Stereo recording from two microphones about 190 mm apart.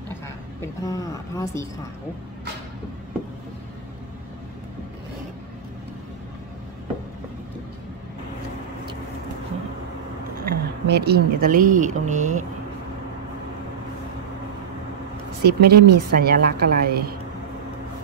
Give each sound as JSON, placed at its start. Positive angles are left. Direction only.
{"t": 0.1, "sound": "a woman's voice", "side_deg": 15}
{"t": 10.4, "sound": "speech", "side_deg": -60}
{"t": 15.4, "sound": "a woman's voice", "side_deg": -55}